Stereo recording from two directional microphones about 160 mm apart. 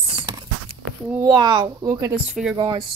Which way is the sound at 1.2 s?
25° right (ahead or behind).